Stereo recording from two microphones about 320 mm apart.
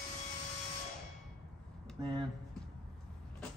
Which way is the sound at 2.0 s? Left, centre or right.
Centre.